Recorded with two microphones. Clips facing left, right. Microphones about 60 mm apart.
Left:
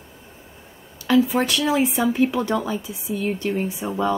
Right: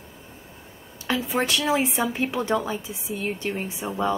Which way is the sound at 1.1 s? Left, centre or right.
Right.